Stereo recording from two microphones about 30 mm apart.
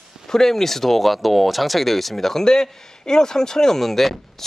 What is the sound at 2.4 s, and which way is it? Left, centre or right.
Speech, centre.